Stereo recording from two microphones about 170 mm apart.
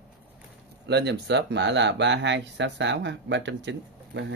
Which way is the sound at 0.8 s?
80° right.